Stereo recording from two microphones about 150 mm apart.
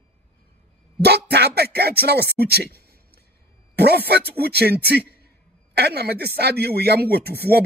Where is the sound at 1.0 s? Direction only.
90° right.